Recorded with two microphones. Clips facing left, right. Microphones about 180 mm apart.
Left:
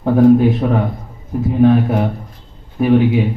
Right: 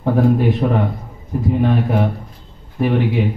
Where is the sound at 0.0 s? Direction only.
Centre (ahead or behind).